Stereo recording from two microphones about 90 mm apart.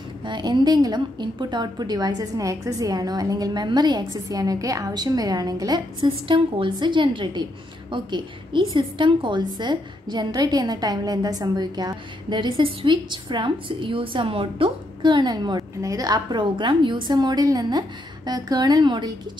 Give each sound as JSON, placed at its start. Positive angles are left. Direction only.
{"t": 0.2, "sound": "a woman's voice", "side_deg": -55}
{"t": 5.9, "sound": "a woman's voice", "side_deg": -75}